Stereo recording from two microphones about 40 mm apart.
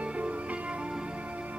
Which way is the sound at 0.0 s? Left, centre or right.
Right.